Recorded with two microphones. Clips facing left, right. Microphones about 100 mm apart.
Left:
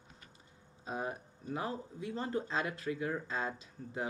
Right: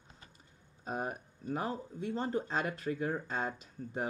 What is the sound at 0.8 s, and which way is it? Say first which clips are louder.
Speech: right 2 dB; 50° right (ahead or behind).